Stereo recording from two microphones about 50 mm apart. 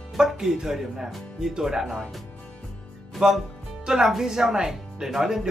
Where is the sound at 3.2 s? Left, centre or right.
Centre.